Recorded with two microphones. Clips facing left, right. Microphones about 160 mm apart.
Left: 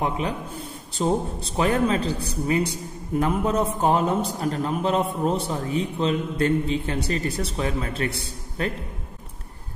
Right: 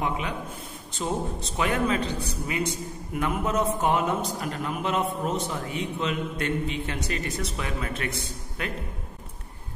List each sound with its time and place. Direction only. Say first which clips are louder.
0.9 s a man's voice: left 5 dB; 35° left (ahead or behind)